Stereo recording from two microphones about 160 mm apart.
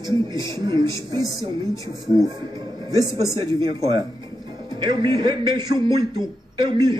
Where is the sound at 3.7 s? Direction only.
25° right (ahead or behind).